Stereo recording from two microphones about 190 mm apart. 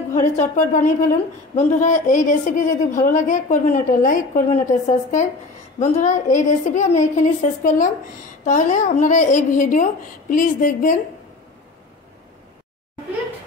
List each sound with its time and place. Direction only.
0.1 s a woman's voice: 40° left (ahead or behind)